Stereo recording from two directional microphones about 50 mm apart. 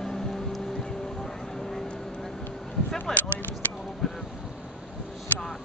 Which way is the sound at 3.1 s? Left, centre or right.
Centre.